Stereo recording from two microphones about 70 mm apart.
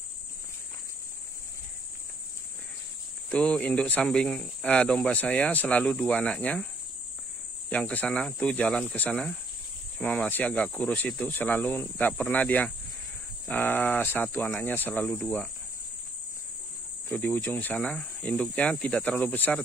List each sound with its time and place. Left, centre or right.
3.3 s speech: centre
7.7 s speech: left
17.1 s speech: left
17.7 s speech: centre